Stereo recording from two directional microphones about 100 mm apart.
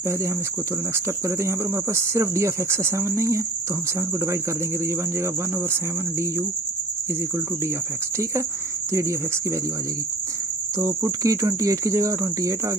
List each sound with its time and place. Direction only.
0.9 s speech: 30° right (ahead or behind)
4.8 s speech: 25° right (ahead or behind)
10.8 s speech: 35° right (ahead or behind)